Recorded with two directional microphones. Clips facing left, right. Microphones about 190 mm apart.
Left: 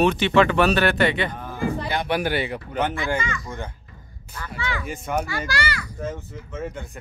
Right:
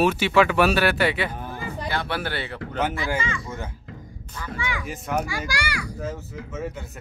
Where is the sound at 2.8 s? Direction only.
5° right (ahead or behind).